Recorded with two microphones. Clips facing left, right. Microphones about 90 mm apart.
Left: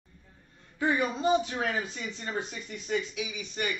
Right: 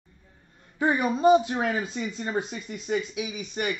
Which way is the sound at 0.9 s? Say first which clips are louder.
Right 8 dB; 15° right (ahead or behind).